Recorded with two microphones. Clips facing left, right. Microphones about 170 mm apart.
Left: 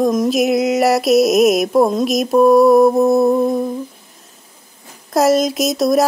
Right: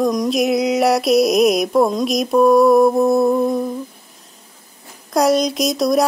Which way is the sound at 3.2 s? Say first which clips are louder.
Left 2 dB; 20° left (ahead or behind).